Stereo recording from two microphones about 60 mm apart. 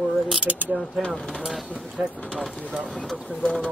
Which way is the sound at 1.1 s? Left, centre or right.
Centre.